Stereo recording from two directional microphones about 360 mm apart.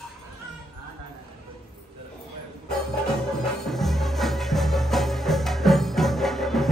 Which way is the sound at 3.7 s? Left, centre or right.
Centre.